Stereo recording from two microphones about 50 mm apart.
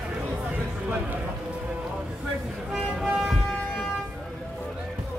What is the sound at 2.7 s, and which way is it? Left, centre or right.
Toot, centre.